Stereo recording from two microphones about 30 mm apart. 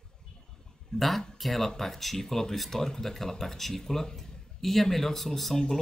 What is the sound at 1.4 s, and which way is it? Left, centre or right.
Speech, centre.